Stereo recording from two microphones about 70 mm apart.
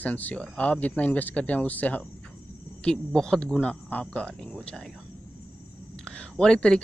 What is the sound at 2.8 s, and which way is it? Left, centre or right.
Speech, centre.